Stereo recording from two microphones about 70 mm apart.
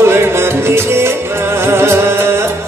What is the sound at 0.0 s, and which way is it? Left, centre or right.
Music, right.